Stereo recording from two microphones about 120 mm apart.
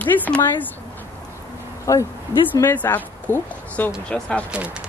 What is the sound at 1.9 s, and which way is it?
A woman's voice, 25° left (ahead or behind).